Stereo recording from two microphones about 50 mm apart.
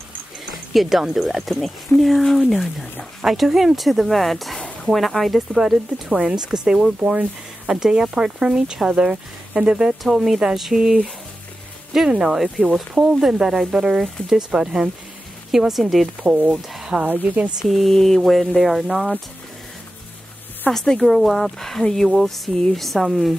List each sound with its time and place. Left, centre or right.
0.7 s speech: centre
6.0 s speech: centre
17.0 s a woman's voice: right
17.6 s speech: centre
20.7 s speech: centre